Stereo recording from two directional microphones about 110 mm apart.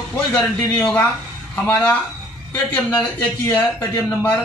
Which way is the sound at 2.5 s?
15° left (ahead or behind).